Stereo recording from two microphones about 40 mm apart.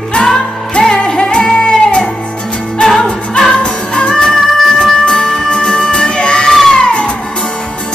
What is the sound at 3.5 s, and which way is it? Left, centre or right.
Music, left.